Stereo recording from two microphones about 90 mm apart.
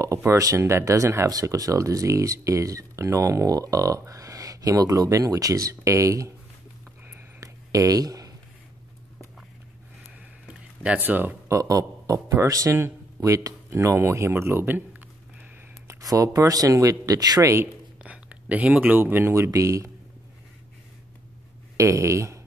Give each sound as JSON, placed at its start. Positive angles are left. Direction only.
{"t": 0.3, "sound": "speech", "side_deg": -35}
{"t": 7.3, "sound": "a sound", "side_deg": -40}
{"t": 10.8, "sound": "speech", "side_deg": -20}
{"t": 11.4, "sound": "speech", "side_deg": -35}
{"t": 15.9, "sound": "speech", "side_deg": -40}
{"t": 18.0, "sound": "speech", "side_deg": -15}
{"t": 21.7, "sound": "speech", "side_deg": -35}